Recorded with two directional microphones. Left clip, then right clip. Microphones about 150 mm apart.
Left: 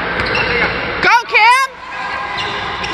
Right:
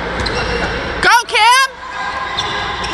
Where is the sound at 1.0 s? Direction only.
15° right (ahead or behind).